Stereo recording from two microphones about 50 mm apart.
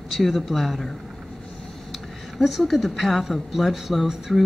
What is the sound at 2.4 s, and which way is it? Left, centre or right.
Speech, centre.